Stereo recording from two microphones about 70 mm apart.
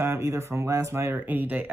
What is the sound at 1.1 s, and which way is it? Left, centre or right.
Speech, right.